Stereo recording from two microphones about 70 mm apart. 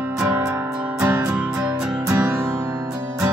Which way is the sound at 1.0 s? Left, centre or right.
Right.